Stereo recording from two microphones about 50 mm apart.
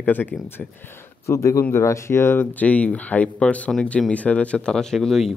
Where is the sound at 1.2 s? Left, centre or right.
Left.